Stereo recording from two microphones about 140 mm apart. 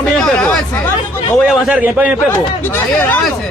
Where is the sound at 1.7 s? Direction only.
10° right (ahead or behind).